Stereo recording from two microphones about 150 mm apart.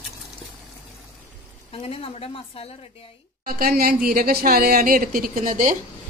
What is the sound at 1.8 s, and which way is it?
Speech, 40° left (ahead or behind).